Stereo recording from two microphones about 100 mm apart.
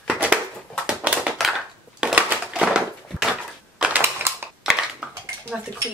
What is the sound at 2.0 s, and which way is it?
Crushing, 10° right (ahead or behind).